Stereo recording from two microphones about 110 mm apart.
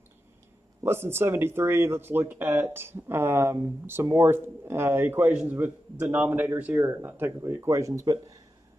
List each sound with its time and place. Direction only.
0.8 s speech: 20° right (ahead or behind)